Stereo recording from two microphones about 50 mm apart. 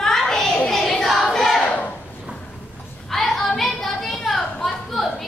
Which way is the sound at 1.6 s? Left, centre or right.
Left.